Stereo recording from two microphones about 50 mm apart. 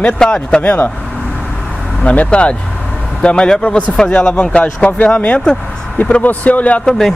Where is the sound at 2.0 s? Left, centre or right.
Left.